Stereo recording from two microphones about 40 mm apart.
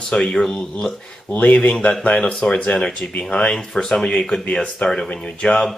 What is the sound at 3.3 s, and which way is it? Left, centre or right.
Speech, left.